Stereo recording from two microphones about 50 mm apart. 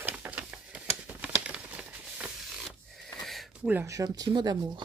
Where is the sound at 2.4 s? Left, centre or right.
Centre.